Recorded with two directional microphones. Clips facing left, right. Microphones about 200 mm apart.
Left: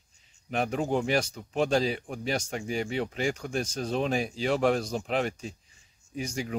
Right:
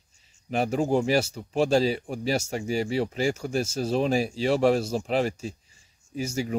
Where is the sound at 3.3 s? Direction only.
5° right (ahead or behind).